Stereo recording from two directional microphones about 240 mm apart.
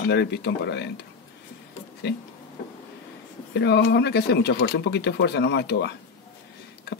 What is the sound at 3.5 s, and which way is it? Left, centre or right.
Speech, left.